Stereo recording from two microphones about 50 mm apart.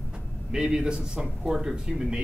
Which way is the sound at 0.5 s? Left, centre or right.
Centre.